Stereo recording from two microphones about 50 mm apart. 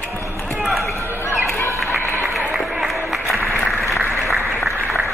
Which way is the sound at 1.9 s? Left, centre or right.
Right.